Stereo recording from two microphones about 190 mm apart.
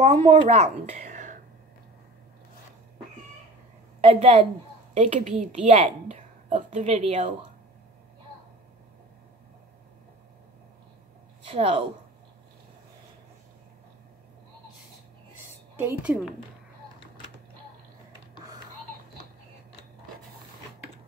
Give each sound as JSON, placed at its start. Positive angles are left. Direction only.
{"t": 0.0, "sound": "a woman's voice", "side_deg": -35}
{"t": 4.0, "sound": "a woman's voice", "side_deg": -30}
{"t": 11.4, "sound": "a woman's voice", "side_deg": -30}
{"t": 15.8, "sound": "a woman's voice", "side_deg": -10}